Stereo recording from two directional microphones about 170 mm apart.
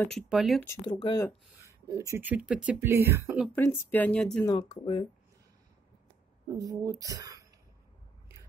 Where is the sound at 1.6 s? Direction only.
20° right (ahead or behind).